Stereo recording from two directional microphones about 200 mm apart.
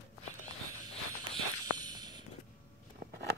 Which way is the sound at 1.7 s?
20° right (ahead or behind).